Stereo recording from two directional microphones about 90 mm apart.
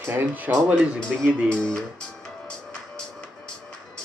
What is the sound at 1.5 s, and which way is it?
Speech, 10° left (ahead or behind).